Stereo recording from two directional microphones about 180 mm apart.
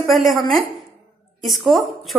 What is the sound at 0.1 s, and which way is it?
Speech, centre (ahead or behind).